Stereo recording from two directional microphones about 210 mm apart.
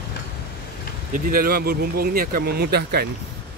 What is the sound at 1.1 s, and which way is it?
Speech, 45° right (ahead or behind).